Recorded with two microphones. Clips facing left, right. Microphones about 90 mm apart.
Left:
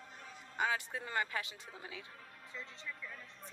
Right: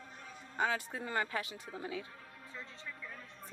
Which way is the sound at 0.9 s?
30° right (ahead or behind).